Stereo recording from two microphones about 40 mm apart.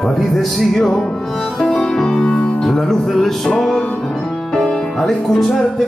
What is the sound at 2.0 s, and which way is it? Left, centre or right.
Music, left.